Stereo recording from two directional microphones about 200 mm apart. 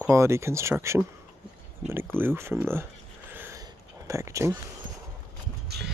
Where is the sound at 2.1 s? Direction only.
10° right (ahead or behind).